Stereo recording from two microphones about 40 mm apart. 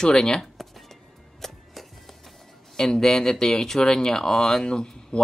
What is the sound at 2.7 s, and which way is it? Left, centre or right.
Speech, centre.